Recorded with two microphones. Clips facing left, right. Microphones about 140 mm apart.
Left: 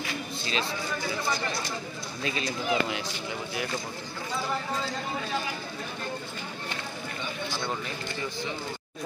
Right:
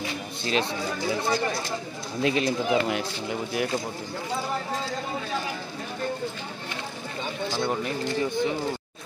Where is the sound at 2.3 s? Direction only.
55° right (ahead or behind).